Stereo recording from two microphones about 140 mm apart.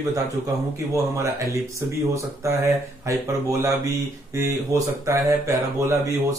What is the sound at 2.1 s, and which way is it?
Speech, 20° right (ahead or behind).